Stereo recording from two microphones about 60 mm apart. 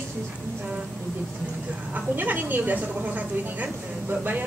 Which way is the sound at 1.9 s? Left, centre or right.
Right.